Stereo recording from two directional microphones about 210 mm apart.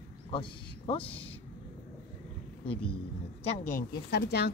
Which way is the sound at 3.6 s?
40° left (ahead or behind).